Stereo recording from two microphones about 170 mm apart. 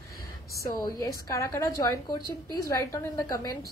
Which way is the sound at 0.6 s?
20° left (ahead or behind).